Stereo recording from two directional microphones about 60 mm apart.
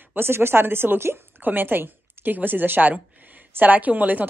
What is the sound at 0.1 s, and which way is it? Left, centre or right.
A woman's voice, right.